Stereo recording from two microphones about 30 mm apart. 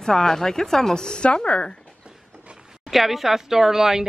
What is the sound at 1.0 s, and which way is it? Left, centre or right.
Speech, left.